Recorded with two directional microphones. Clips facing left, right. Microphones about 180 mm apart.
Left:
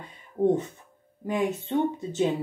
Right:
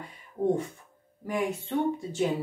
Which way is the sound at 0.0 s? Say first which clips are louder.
Left 4 dB; 20° left (ahead or behind).